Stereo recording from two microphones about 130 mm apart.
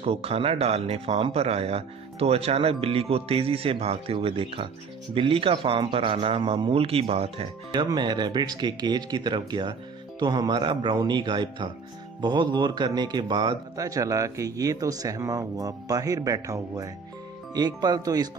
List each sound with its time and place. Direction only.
0.0 s a man's voice: 50° right (ahead or behind)
7.7 s speech: 35° right (ahead or behind)